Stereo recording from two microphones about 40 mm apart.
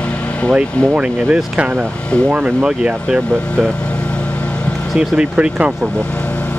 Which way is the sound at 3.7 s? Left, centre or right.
Left.